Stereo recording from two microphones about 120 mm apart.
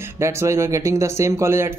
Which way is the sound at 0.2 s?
25° right (ahead or behind).